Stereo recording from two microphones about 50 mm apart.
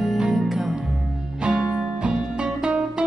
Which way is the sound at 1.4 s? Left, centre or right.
Centre.